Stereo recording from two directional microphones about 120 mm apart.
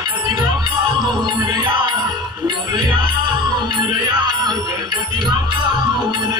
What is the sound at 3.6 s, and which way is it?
Music, 40° right (ahead or behind).